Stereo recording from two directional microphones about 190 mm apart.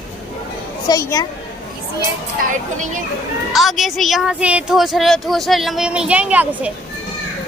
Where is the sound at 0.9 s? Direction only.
15° left (ahead or behind).